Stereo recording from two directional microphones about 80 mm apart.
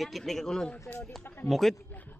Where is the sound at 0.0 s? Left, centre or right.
Centre.